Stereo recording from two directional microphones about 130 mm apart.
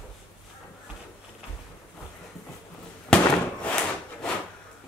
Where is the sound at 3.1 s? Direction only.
10° left (ahead or behind).